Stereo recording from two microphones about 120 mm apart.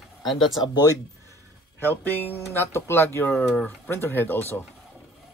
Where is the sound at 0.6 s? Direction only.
35° left (ahead or behind).